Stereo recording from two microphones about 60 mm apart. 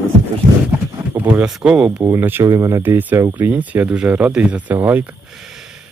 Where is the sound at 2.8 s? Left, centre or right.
Right.